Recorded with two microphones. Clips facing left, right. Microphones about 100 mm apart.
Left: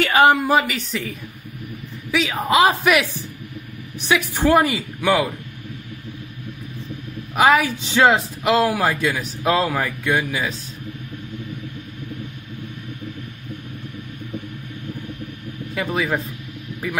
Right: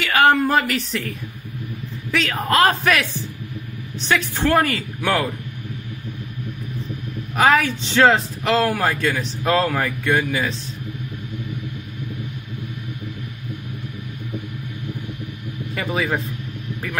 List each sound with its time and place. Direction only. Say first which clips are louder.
0.1 s a sound: even; 15° left (ahead or behind)
0.4 s a man's voice: even; 10° left (ahead or behind)
4.1 s speech: left 2 dB; 15° left (ahead or behind)
5.0 s a man's voice: left 2 dB; 5° left (ahead or behind)
7.3 s a man's voice: left 1 dB; 5° left (ahead or behind)
15.7 s a man's voice: left 1 dB; centre (ahead or behind)